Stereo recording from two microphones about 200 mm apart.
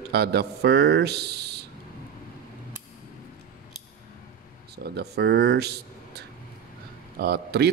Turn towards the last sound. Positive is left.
turn(degrees=-55)  # may be behind; listen again after turning